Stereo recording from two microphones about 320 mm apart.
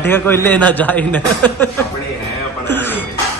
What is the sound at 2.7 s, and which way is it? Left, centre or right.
Music, centre.